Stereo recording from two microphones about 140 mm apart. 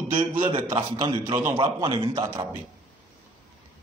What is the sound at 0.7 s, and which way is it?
A man's voice, 30° right (ahead or behind).